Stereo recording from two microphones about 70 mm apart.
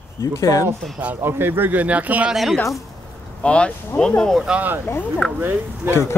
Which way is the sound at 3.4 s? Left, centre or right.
Centre.